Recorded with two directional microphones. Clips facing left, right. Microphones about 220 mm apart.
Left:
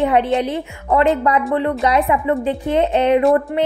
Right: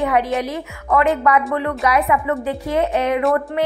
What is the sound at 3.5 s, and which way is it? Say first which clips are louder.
Speech: left 2 dB; 15° left (ahead or behind).